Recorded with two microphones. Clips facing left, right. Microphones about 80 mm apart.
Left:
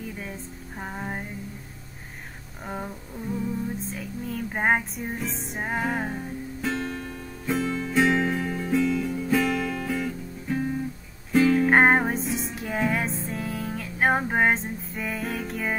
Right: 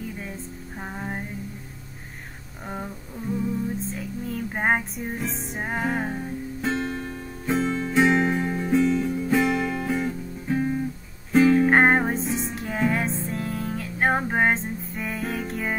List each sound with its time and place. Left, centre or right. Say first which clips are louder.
0.7 s music: even; centre
2.6 s a sound: even; centre
4.3 s music: even; centre
6.1 s music: right 2 dB; right
11.7 s music: even; centre